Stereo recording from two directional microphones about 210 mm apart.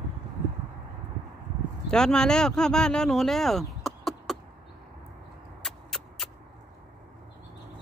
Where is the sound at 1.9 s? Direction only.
5° left (ahead or behind).